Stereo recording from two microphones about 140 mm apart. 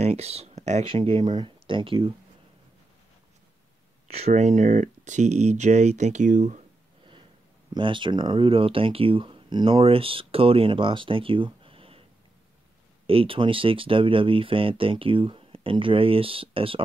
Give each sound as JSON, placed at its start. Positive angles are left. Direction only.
{"t": 0.0, "sound": "speech", "side_deg": -50}
{"t": 0.8, "sound": "speech", "side_deg": -40}
{"t": 1.2, "sound": "speech", "side_deg": -30}
{"t": 4.1, "sound": "speech", "side_deg": -50}
{"t": 7.7, "sound": "speech", "side_deg": -35}
{"t": 13.0, "sound": "speech", "side_deg": -45}